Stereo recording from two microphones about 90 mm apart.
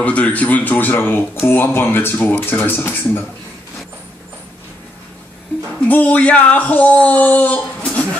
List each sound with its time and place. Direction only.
0.0 s speech: 15° left (ahead or behind)
5.9 s speech: 20° left (ahead or behind)